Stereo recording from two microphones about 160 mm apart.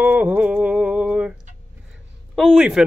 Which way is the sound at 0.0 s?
10° right (ahead or behind).